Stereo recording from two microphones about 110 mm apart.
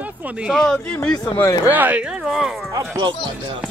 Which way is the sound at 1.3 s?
30° left (ahead or behind).